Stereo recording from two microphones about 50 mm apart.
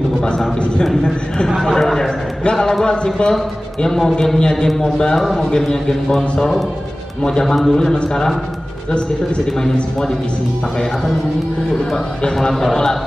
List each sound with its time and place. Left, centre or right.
1.6 s a man's voice: centre
7.2 s a man's voice: centre
12.4 s a man's voice: centre